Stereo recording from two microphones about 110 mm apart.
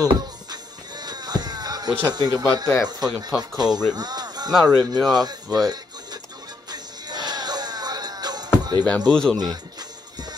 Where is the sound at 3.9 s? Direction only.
40° right (ahead or behind).